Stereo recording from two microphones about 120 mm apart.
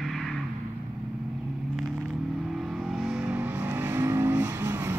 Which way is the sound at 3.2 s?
15° right (ahead or behind).